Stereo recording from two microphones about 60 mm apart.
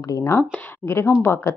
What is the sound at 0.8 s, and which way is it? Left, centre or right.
Speech, left.